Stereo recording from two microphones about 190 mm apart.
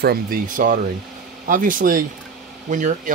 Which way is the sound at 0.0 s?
50° right (ahead or behind).